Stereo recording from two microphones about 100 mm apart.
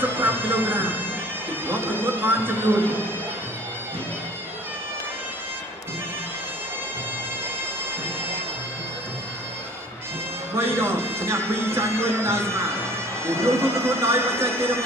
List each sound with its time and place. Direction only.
0.0 s music: 20° right (ahead or behind)
1.7 s speech: 20° right (ahead or behind)
10.5 s speech: 25° right (ahead or behind)